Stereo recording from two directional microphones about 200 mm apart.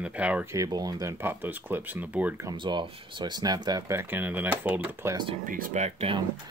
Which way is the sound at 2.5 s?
25° right (ahead or behind).